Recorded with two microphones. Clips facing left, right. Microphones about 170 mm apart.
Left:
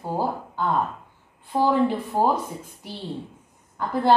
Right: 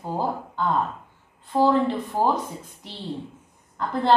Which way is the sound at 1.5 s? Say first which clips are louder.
Right 1 dB; 10° left (ahead or behind).